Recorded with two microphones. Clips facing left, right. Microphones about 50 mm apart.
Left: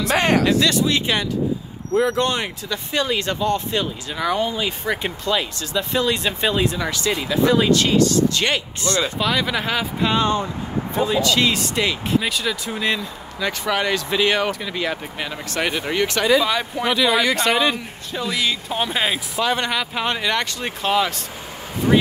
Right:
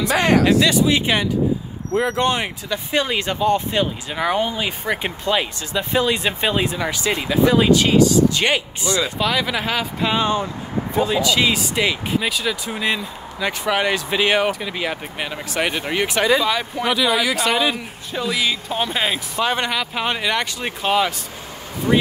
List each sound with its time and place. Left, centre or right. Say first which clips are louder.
0.5 s speech: right 2 dB; centre
9.2 s speech: even; centre
16.3 s speech: left 1 dB; centre